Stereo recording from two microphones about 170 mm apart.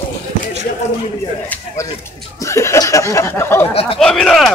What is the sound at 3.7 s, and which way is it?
Speech, 35° left (ahead or behind).